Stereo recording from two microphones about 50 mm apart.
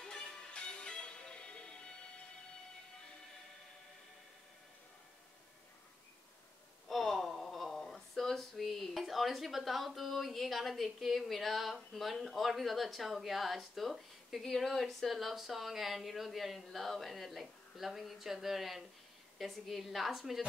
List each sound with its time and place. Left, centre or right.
0.0 s music: centre
6.9 s speech: centre